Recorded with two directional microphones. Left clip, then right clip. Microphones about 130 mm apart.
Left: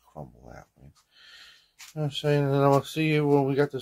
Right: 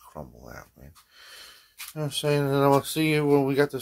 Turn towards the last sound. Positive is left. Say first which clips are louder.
# right 1 dB
turn(degrees=-15)  # may be behind; listen again after turning